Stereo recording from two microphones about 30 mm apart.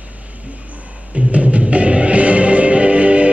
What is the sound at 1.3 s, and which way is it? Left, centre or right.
Music, right.